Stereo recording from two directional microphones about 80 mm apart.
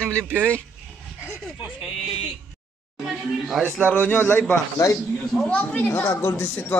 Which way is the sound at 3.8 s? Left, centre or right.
Left.